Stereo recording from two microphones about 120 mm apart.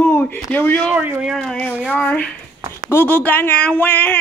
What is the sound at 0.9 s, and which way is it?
Speech, 15° right (ahead or behind).